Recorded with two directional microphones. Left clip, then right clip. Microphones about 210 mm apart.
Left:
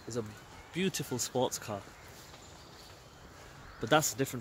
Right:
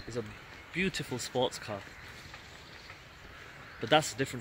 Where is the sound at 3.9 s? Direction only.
25° left (ahead or behind).